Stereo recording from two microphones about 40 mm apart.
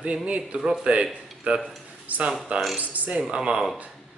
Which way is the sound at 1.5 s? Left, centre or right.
Right.